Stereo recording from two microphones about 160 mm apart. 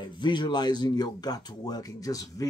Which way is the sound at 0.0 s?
25° left (ahead or behind).